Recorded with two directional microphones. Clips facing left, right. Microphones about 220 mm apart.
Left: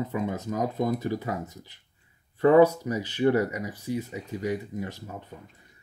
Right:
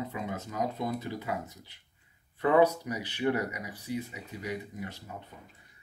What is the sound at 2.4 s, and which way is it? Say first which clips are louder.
Speech: left 6 dB; 45° left (ahead or behind).